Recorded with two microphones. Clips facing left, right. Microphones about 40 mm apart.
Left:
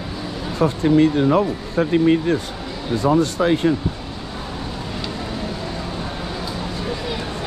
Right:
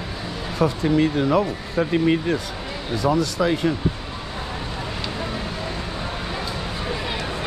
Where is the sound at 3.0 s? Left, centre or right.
Left.